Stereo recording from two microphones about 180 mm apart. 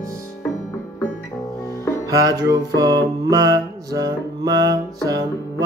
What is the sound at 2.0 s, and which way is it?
Music, 20° right (ahead or behind).